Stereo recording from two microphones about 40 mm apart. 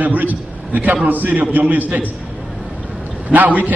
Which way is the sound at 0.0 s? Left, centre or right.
Right.